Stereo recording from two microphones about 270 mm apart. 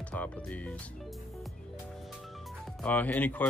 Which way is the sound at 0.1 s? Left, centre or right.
Centre.